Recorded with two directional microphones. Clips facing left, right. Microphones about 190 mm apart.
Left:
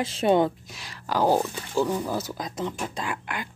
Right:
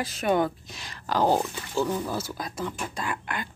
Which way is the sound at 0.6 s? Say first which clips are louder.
Even; 5° left (ahead or behind).